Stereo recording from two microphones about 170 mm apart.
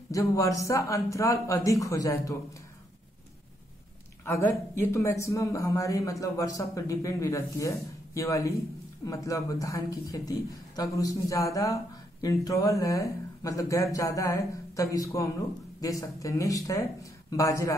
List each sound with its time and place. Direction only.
0.1 s speech: 20° left (ahead or behind)
4.2 s speech: 15° left (ahead or behind)